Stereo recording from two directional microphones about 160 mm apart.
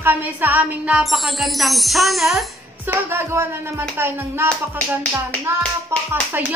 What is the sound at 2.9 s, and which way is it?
A woman's voice, 15° right (ahead or behind).